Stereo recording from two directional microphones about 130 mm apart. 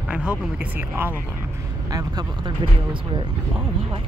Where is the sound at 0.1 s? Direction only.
10° right (ahead or behind).